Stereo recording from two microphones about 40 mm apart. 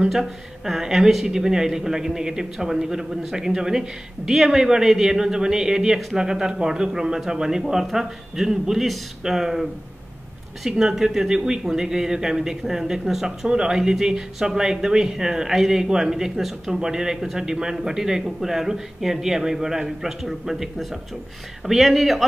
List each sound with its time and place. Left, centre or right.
0.7 s speech: centre
10.8 s speech: centre